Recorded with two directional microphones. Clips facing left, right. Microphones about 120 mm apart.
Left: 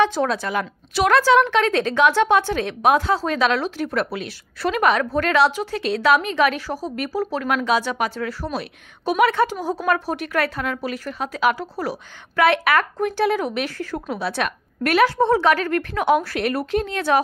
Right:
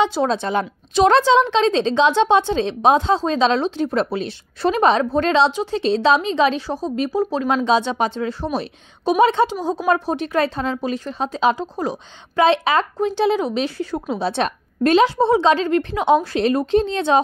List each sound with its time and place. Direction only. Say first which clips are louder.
0.0 s speech: right 1 dB; 15° right (ahead or behind)
14.1 s speech: right 4 dB; 25° right (ahead or behind)